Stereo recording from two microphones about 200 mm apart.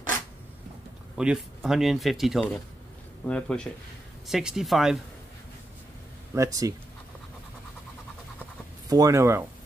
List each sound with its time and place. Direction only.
1.1 s speech: 5° right (ahead or behind)
6.3 s speech: 15° right (ahead or behind)
8.8 s speech: 20° right (ahead or behind)